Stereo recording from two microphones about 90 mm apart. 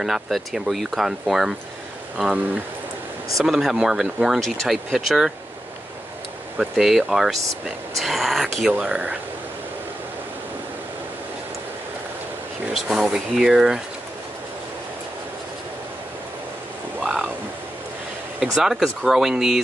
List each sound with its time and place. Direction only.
0.0 s speech: centre (ahead or behind)
6.6 s speech: 5° right (ahead or behind)
12.7 s speech: 5° right (ahead or behind)
18.4 s speech: 5° right (ahead or behind)